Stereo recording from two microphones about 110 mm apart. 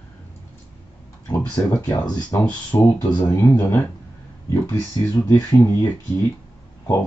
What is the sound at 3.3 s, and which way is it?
Speech, 20° left (ahead or behind).